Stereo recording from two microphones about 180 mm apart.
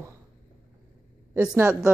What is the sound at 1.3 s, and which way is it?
Speech, 10° right (ahead or behind).